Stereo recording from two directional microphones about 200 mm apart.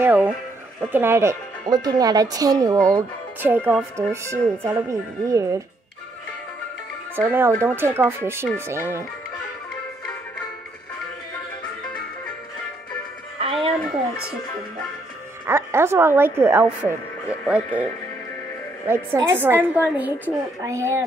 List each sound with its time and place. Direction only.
0.0 s speech: 10° right (ahead or behind)
7.2 s speech: 10° right (ahead or behind)
13.4 s music: 30° right (ahead or behind)
15.4 s speech: 10° right (ahead or behind)
19.1 s speech: 10° right (ahead or behind)